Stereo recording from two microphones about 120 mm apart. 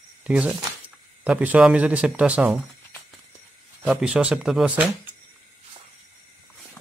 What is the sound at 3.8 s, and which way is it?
Speech, 5° right (ahead or behind).